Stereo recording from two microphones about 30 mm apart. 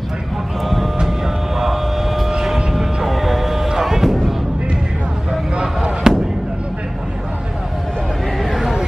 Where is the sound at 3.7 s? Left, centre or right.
Centre.